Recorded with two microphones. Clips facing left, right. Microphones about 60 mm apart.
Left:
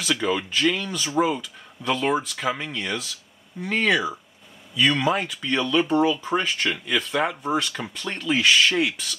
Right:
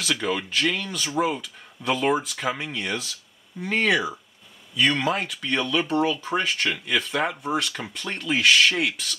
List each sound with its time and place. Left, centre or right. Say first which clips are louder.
0.0 s speech: left 2 dB; centre